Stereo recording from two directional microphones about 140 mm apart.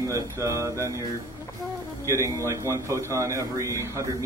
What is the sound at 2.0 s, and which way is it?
A man's voice, 20° right (ahead or behind).